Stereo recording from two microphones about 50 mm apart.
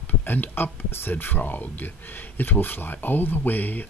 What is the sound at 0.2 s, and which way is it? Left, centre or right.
Speech, left.